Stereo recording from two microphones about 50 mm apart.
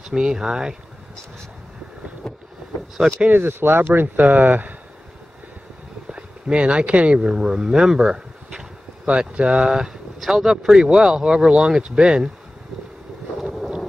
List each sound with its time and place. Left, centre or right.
0.1 s speech: centre
2.2 s boat: centre
3.3 s speech: right
6.0 s speech: centre